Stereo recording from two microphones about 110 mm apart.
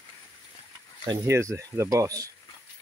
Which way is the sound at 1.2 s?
25° right (ahead or behind).